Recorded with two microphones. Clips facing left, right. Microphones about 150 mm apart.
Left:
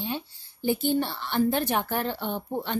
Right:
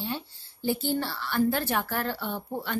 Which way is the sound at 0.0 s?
15° left (ahead or behind).